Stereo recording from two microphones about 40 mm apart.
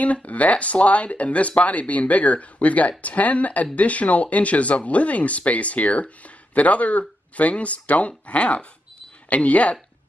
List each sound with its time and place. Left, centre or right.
0.0 s speech: left